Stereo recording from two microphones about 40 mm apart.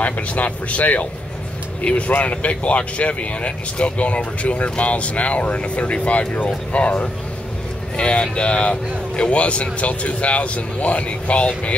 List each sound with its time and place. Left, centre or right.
0.0 s speech: left